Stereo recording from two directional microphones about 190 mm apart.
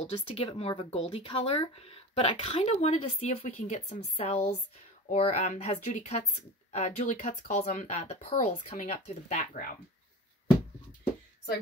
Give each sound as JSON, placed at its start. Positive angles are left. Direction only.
{"t": 0.0, "sound": "speech", "side_deg": 30}